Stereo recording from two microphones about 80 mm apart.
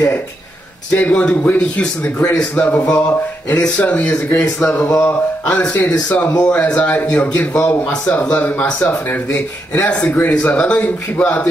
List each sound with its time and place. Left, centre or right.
0.9 s a man's voice: centre